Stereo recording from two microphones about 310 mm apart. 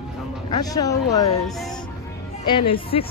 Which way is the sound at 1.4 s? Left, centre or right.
Centre.